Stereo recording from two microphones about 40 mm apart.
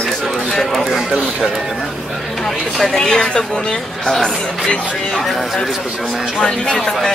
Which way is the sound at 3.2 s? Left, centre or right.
Left.